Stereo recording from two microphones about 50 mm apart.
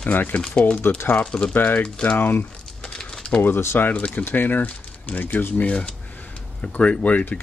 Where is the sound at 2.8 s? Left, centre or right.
Centre.